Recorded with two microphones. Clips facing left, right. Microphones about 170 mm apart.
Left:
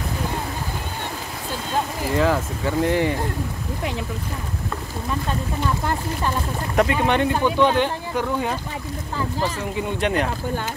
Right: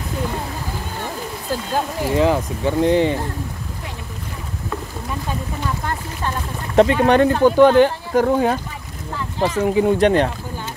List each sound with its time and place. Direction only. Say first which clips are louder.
2.0 s speech: right 3 dB; 20° right (ahead or behind)
6.8 s speech: right 6 dB; 30° right (ahead or behind)
7.2 s speech: right 8 dB; 45° right (ahead or behind)
9.6 s speech: right 9 dB; 40° right (ahead or behind)